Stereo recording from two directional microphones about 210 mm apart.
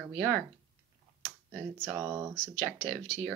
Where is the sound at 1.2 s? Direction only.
10° right (ahead or behind).